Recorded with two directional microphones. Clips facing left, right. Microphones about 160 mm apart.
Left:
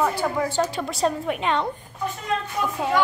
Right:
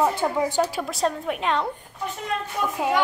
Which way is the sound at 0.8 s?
Centre (ahead or behind).